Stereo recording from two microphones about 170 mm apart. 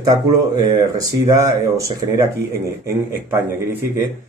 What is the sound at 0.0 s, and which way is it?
Speech, 25° right (ahead or behind).